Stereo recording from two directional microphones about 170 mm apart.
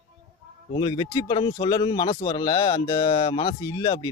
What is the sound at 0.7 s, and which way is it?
Speech, 25° left (ahead or behind).